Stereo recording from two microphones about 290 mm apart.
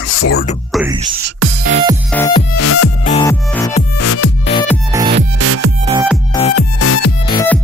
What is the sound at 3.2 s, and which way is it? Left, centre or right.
Music, centre.